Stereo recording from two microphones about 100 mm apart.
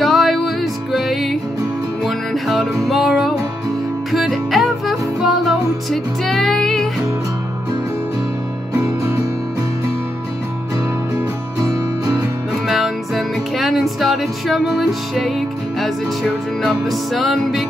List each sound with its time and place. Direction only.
0.0 s music: centre (ahead or behind)
12.6 s music: centre (ahead or behind)